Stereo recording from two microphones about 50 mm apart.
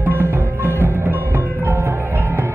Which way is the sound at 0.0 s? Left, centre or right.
Right.